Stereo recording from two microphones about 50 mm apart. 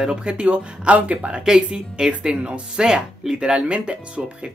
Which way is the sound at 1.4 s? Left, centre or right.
Centre.